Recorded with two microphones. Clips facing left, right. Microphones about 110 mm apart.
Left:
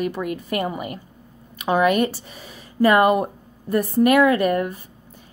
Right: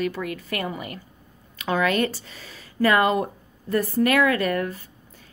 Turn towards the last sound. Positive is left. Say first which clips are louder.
# left 4 dB
turn(degrees=20)  # may be behind; listen again after turning